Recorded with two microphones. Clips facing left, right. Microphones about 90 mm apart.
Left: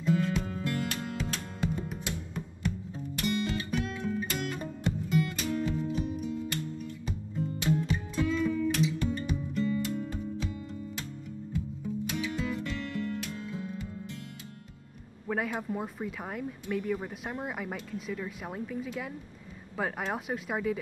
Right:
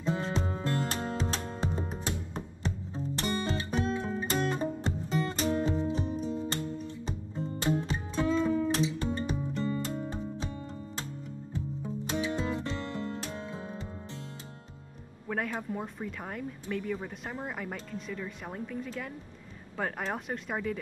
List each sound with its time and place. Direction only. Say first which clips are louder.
0.0 s music: left 3 dB; 30° right (ahead or behind)
15.2 s speech: left 2 dB; 5° left (ahead or behind)